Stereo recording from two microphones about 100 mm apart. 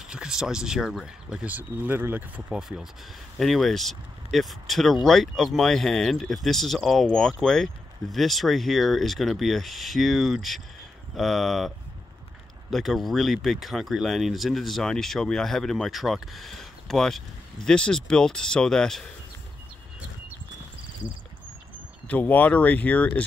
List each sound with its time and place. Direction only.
0.1 s speech: 5° right (ahead or behind)
1.5 s speech: 15° right (ahead or behind)
2.5 s speech: 5° right (ahead or behind)
12.7 s speech: centre (ahead or behind)
22.0 s speech: 15° left (ahead or behind)